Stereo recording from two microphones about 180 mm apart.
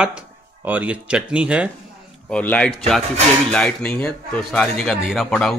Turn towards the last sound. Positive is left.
turn(degrees=5)  # may be behind; listen again after turning